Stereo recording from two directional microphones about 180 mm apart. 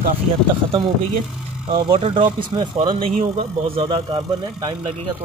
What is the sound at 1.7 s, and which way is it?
Speech, 30° right (ahead or behind).